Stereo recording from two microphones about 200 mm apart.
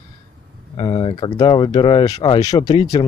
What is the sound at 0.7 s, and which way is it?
Speech, 20° left (ahead or behind).